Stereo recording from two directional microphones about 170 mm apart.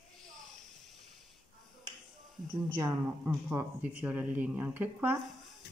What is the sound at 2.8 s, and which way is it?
Speech, 15° right (ahead or behind).